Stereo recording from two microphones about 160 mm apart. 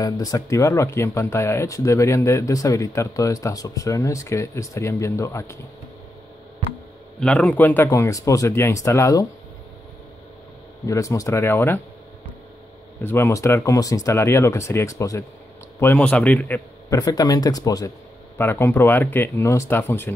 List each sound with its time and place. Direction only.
0.0 s speech: 25° left (ahead or behind)
7.2 s speech: 5° left (ahead or behind)
10.9 s speech: 20° left (ahead or behind)
13.0 s speech: 15° left (ahead or behind)
17.0 s speech: 25° left (ahead or behind)